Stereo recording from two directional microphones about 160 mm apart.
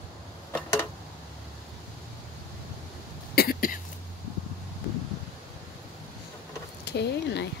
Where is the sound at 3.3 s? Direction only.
65° left (ahead or behind).